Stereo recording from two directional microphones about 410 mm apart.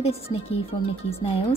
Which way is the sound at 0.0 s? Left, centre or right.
Centre.